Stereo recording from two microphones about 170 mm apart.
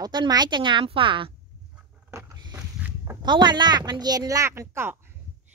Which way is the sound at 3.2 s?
25° right (ahead or behind).